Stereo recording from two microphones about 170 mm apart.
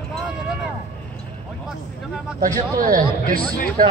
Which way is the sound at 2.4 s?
55° right (ahead or behind).